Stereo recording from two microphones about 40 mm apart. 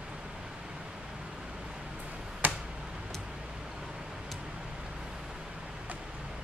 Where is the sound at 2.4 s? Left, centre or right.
Right.